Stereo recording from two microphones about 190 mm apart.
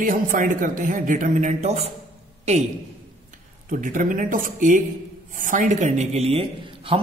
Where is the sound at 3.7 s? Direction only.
45° right (ahead or behind).